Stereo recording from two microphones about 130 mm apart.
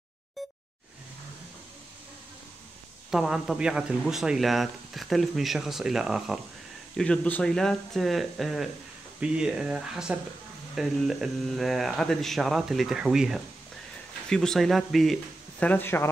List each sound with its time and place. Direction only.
3.1 s a man's voice: 5° right (ahead or behind)
7.0 s a man's voice: 10° left (ahead or behind)
15.6 s speech: 15° left (ahead or behind)